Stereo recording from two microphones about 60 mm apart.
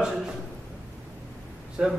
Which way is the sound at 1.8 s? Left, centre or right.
Centre.